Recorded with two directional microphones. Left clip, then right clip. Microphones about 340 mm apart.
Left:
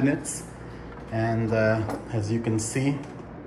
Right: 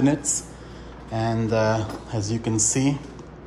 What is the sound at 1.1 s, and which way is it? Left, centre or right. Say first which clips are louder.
Speech: right 2 dB; centre.